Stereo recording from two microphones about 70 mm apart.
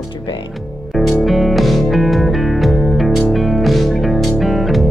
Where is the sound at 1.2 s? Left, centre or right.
Centre.